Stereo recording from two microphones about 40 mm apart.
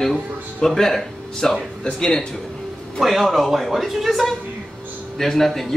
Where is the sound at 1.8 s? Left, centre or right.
Centre.